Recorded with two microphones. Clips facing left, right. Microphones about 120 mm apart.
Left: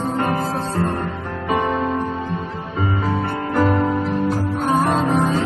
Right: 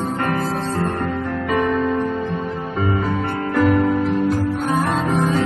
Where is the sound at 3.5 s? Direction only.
35° left (ahead or behind).